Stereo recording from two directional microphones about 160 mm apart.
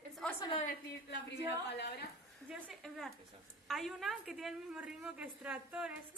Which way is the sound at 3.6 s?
Centre (ahead or behind).